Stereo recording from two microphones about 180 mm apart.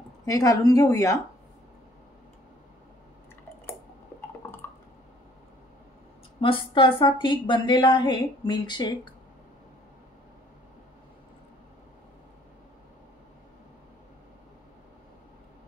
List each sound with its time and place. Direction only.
0.2 s a woman's voice: 20° left (ahead or behind)
6.4 s a woman's voice: 30° left (ahead or behind)